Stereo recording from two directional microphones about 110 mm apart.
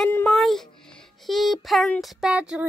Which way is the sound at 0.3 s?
Centre (ahead or behind).